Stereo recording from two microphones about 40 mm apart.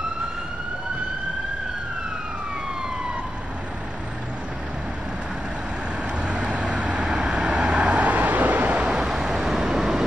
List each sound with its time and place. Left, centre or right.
6.1 s vehicle: right
8.7 s vehicle: right
9.0 s vehicle: centre